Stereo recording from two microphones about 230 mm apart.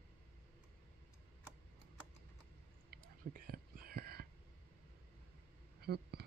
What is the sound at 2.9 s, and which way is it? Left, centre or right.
Whispering, right.